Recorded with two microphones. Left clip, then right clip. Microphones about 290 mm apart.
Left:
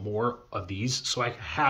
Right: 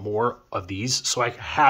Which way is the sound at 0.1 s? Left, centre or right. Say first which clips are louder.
Right 5 dB; centre.